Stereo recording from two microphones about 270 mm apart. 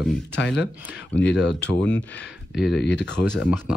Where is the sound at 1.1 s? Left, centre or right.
Left.